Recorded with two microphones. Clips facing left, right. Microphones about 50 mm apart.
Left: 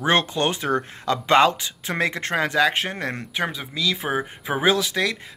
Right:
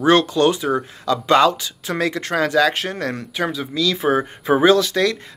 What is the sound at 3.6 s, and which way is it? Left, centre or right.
Speech, centre.